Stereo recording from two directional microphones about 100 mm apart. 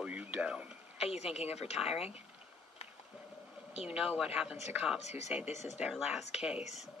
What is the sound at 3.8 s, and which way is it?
Speech, 10° right (ahead or behind).